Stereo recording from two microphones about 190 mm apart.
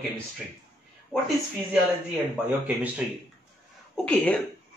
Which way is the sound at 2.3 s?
5° right (ahead or behind).